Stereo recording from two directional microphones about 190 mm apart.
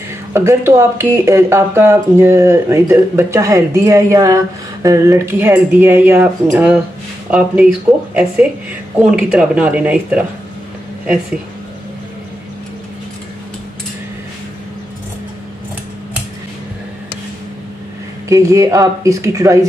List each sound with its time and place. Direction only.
0.3 s speech: 15° right (ahead or behind)
18.3 s speech: 15° right (ahead or behind)